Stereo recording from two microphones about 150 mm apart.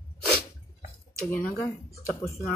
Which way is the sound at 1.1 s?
15° left (ahead or behind).